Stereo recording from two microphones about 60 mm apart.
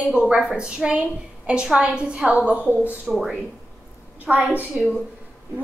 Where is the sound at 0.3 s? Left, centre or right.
Centre.